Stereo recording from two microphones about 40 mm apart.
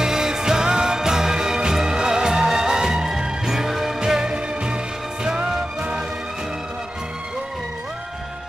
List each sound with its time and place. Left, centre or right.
0.0 s music: centre